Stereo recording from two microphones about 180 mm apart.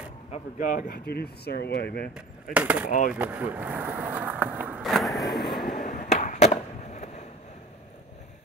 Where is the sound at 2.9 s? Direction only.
45° left (ahead or behind).